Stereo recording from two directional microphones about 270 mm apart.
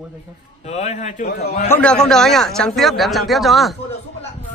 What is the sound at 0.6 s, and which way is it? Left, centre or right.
A man's voice, left.